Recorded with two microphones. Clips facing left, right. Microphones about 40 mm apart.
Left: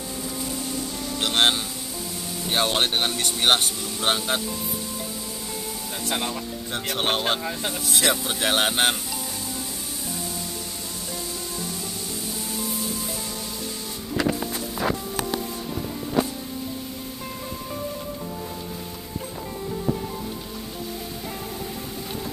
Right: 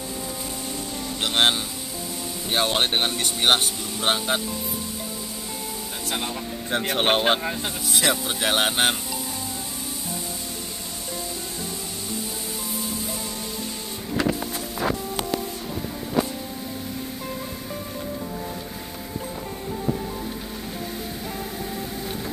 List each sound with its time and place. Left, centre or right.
1.2 s speech: centre
6.0 s speech: centre
6.7 s speech: right
7.6 s speech: centre